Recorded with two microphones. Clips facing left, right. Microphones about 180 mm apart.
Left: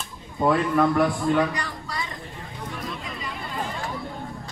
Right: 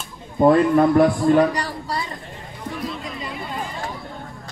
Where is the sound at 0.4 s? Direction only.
35° right (ahead or behind).